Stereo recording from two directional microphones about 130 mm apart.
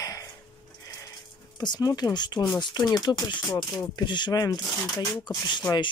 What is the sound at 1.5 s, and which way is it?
Speech, 30° left (ahead or behind).